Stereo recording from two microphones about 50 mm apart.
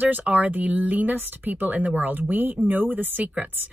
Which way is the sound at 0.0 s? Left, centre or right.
Right.